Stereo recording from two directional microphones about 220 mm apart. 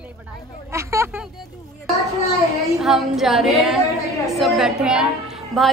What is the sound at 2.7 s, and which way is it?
A woman's voice, centre (ahead or behind).